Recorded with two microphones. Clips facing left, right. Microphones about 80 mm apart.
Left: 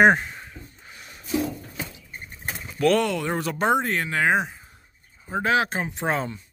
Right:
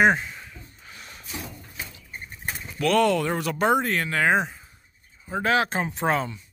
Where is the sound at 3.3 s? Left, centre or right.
Left.